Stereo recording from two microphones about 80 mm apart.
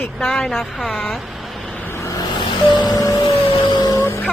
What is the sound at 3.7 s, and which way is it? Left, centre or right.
Vehicle, left.